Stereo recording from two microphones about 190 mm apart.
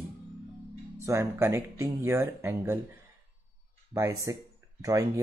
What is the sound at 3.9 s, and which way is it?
Speech, 15° right (ahead or behind).